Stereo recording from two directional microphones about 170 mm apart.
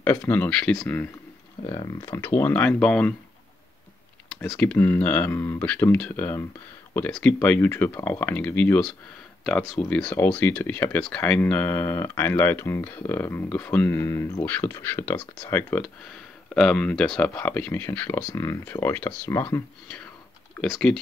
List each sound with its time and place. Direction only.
0.0 s speech: 15° left (ahead or behind)
1.7 s speech: 25° left (ahead or behind); by 3.2 s 5° left (ahead or behind)
4.4 s speech: 5° left (ahead or behind)
20.6 s speech: centre (ahead or behind)